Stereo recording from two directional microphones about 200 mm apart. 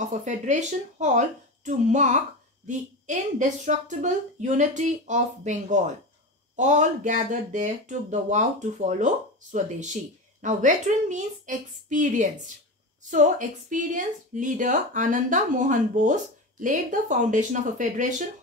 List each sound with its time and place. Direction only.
0.0 s speech: 35° right (ahead or behind)